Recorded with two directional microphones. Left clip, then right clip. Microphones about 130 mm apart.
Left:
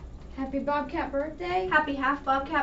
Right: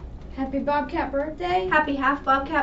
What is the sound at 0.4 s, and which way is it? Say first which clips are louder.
A child's voice: right 4 dB; 35° right (ahead or behind).